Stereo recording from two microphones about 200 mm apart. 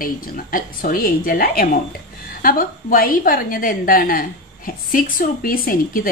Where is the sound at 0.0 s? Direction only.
45° left (ahead or behind).